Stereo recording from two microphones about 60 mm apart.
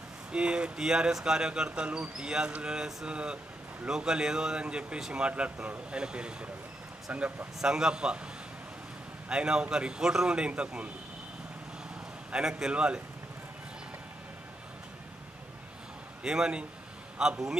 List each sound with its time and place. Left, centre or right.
0.3 s speech: centre
7.6 s speech: centre
9.3 s speech: centre
12.3 s speech: centre
16.2 s speech: centre